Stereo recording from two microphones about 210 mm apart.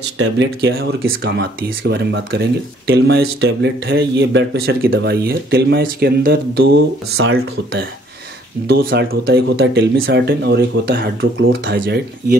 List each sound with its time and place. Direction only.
0.6 s speech: 50° right (ahead or behind)